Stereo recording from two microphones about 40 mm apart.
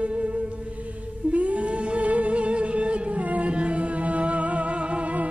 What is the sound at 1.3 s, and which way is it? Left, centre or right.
Music, right.